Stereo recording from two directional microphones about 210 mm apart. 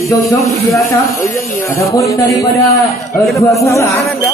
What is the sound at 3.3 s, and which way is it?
Speech, 15° left (ahead or behind).